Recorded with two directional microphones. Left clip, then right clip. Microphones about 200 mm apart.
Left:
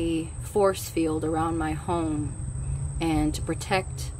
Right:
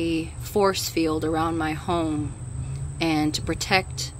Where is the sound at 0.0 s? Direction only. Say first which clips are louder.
Right 2 dB; 5° right (ahead or behind).